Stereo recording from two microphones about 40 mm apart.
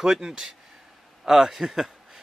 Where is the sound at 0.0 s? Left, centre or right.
Centre.